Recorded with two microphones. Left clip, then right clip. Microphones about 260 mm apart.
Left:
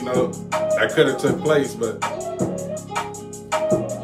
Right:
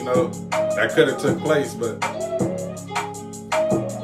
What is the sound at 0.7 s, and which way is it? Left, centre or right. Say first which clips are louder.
Music: left 1 dB; centre.